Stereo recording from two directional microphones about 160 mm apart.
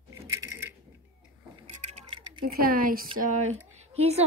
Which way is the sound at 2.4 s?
65° right (ahead or behind).